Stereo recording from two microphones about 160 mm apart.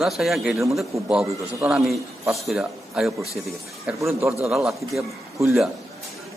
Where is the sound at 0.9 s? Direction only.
10° right (ahead or behind).